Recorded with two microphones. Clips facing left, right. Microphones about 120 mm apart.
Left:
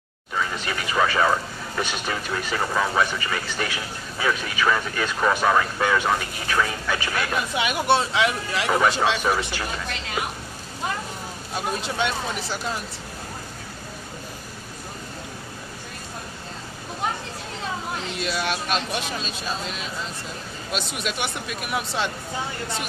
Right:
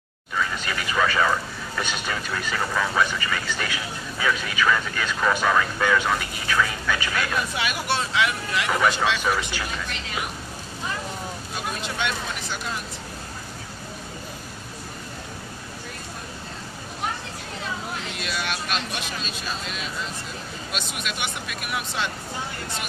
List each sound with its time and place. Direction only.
0.4 s speech: 25° left (ahead or behind)
18.2 s speech: 30° left (ahead or behind)
20.7 s speech: 30° left (ahead or behind)